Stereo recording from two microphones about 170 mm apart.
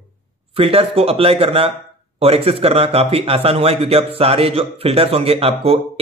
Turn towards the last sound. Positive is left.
turn(degrees=-35)  # may be behind; listen again after turning